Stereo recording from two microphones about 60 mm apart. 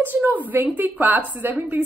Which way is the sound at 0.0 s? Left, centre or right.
Right.